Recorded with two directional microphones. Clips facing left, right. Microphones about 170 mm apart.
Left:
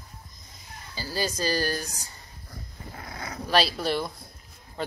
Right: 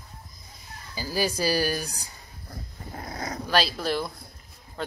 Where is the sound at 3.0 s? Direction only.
40° right (ahead or behind).